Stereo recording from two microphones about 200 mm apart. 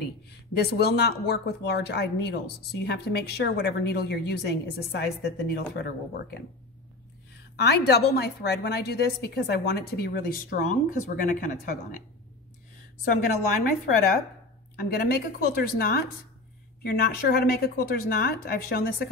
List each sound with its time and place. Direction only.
0.0 s speech: 55° left (ahead or behind)
7.5 s a woman's voice: 55° left (ahead or behind)
14.8 s a woman's voice: 50° left (ahead or behind)